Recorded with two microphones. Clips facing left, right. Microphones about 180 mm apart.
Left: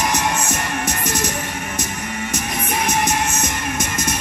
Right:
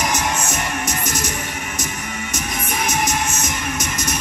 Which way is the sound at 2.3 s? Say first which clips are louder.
Left 2 dB; 60° left (ahead or behind).